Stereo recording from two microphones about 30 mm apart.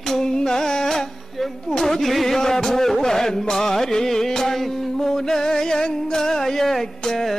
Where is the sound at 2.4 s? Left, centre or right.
Centre.